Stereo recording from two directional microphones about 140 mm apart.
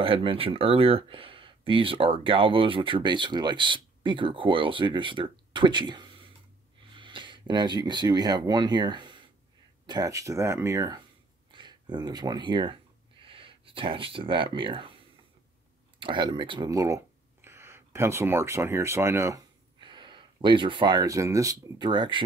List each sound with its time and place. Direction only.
0.0 s speech: 40° right (ahead or behind)
16.0 s speech: 35° right (ahead or behind); by 19.4 s 20° right (ahead or behind)
19.8 s speech: 35° right (ahead or behind)